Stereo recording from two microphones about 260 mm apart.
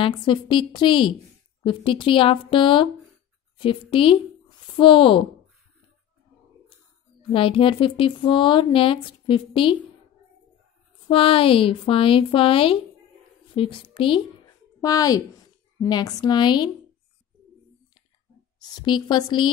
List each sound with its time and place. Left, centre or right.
0.0 s a woman's voice: centre
7.2 s speech: centre
11.1 s a woman's voice: left
18.6 s a woman's voice: centre